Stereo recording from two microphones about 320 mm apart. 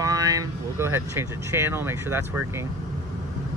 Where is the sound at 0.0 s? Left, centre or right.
Centre.